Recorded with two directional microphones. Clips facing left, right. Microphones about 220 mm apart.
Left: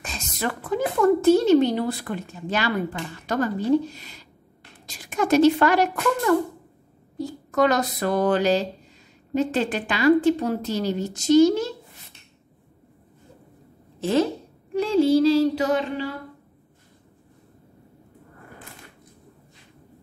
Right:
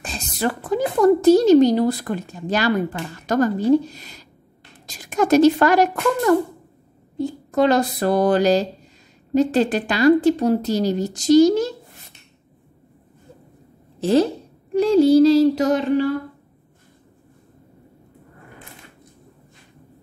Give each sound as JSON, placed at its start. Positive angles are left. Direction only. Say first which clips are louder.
{"t": 0.0, "sound": "speech", "louder": "right 5 dB", "side_deg": -35}
{"t": 7.2, "sound": "speech", "louder": "right 3 dB", "side_deg": -30}
{"t": 14.7, "sound": "speech", "louder": "right 5 dB", "side_deg": -40}